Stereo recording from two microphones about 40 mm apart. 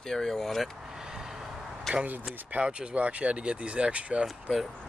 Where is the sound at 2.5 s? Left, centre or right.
Right.